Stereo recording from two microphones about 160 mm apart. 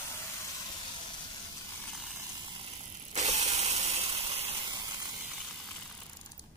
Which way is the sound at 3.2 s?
45° right (ahead or behind).